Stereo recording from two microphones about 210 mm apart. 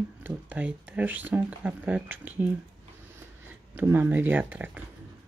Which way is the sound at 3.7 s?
10° right (ahead or behind).